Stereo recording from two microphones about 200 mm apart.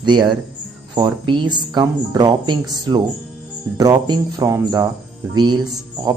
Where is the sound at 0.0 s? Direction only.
20° right (ahead or behind).